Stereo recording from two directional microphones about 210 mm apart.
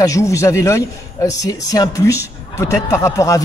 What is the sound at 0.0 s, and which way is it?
A man's voice, 15° left (ahead or behind).